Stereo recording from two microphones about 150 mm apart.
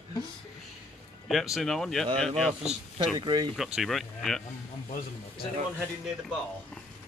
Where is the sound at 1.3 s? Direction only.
Centre (ahead or behind).